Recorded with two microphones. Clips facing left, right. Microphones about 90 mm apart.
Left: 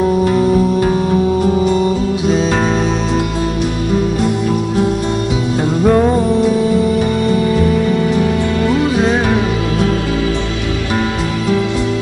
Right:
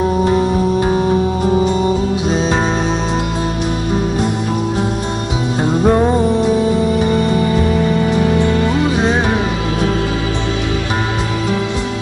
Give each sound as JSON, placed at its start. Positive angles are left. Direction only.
{"t": 0.2, "sound": "music", "side_deg": -15}
{"t": 5.6, "sound": "music", "side_deg": -20}